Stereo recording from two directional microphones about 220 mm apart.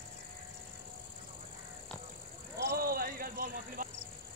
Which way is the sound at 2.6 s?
45° right (ahead or behind).